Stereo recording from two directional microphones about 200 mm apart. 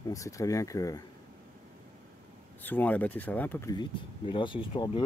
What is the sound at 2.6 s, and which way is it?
Speech, 10° left (ahead or behind).